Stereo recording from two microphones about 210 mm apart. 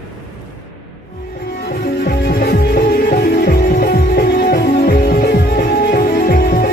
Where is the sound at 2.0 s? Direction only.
45° left (ahead or behind).